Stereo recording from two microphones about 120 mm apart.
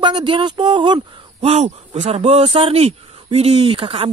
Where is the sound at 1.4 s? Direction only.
60° right (ahead or behind).